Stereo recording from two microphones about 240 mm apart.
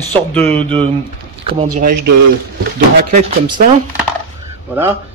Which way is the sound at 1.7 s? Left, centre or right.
Right.